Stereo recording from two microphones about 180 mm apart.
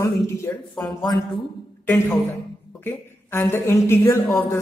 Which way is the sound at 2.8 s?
10° left (ahead or behind).